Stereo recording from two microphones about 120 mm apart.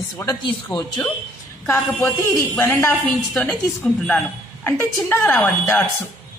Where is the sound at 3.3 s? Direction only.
Centre (ahead or behind).